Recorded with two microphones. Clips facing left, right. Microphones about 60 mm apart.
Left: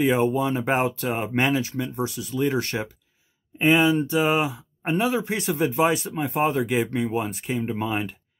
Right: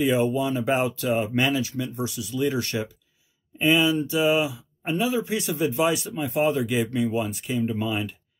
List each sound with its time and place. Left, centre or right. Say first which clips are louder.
0.0 s speech: left 1 dB; left